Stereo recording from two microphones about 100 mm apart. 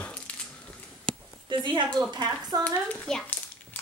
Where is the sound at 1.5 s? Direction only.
55° right (ahead or behind).